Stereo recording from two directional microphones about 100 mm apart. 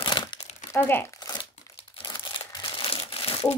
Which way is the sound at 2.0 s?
55° left (ahead or behind).